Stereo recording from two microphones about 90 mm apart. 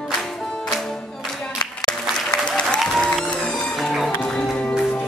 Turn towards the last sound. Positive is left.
turn(degrees=5)  # may be behind; listen again after turning